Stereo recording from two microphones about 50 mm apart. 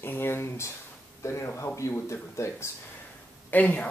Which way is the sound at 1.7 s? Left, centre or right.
Left.